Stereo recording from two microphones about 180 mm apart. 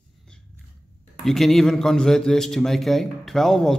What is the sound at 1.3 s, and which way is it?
A man's voice, centre (ahead or behind).